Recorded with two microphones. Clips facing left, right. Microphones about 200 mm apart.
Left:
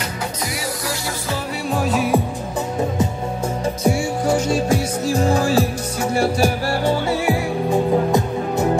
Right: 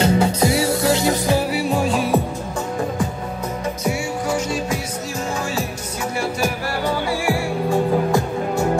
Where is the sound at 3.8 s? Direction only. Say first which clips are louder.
Left 5 dB; 30° left (ahead or behind).